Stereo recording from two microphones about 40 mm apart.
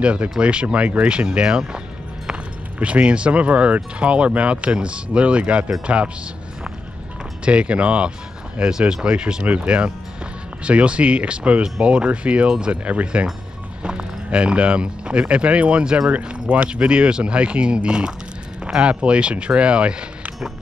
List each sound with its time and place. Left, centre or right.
0.0 s speech: right
2.8 s speech: right
7.4 s speech: right
9.4 s speech: right
12.8 s speech: right